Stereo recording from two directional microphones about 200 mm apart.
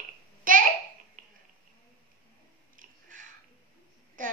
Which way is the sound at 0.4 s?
40° right (ahead or behind).